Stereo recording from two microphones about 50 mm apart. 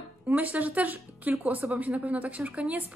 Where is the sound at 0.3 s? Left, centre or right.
Right.